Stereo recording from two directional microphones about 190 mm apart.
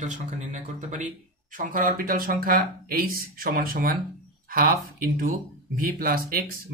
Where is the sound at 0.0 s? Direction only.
40° right (ahead or behind).